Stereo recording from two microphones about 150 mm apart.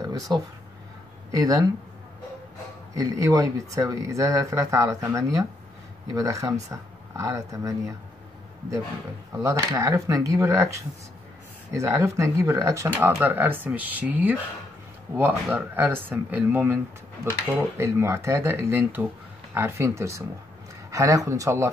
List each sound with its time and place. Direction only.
0.0 s a sound: 25° right (ahead or behind)
1.3 s speech: 25° right (ahead or behind)
2.9 s speech: 20° right (ahead or behind)
9.3 s speech: 20° right (ahead or behind)